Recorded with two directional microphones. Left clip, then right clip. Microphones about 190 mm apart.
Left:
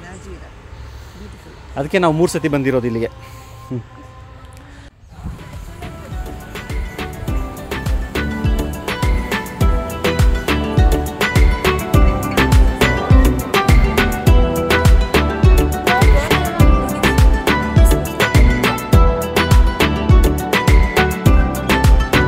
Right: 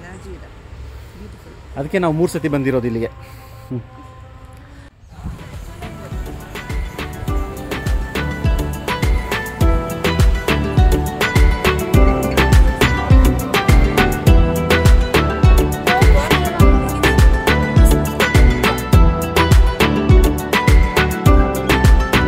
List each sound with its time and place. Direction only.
1.8 s speech: 20° left (ahead or behind)
5.4 s music: centre (ahead or behind)